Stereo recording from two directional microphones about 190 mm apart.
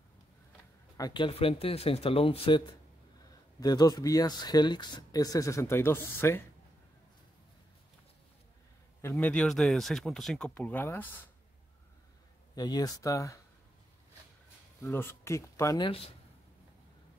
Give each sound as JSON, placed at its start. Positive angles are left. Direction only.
{"t": 0.9, "sound": "speech", "side_deg": 20}
{"t": 9.0, "sound": "speech", "side_deg": 10}
{"t": 12.5, "sound": "speech", "side_deg": 20}
{"t": 14.8, "sound": "speech", "side_deg": 15}